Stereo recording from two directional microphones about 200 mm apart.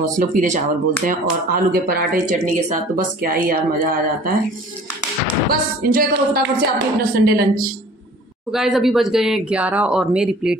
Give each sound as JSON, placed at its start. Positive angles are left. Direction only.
{"t": 0.0, "sound": "speech", "side_deg": -40}
{"t": 5.5, "sound": "speech", "side_deg": -45}
{"t": 8.5, "sound": "speech", "side_deg": 0}